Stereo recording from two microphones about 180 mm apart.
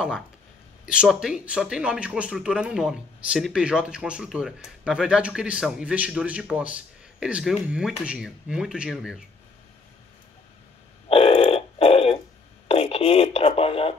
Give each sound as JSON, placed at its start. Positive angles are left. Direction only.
{"t": 0.8, "sound": "speech", "side_deg": -5}
{"t": 11.1, "sound": "burping", "side_deg": 30}
{"t": 12.6, "sound": "speech", "side_deg": 35}